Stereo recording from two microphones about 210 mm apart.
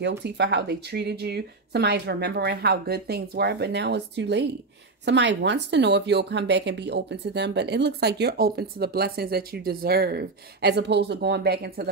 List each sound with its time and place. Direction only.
0.0 s speech: 55° right (ahead or behind)